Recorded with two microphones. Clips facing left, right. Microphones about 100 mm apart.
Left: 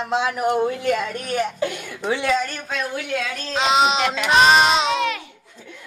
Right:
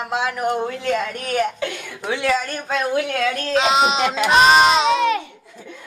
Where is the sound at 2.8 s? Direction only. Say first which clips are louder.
Right 5 dB; 65° right (ahead or behind).